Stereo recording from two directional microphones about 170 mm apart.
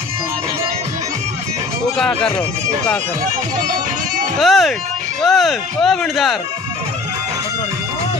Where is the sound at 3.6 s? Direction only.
50° right (ahead or behind).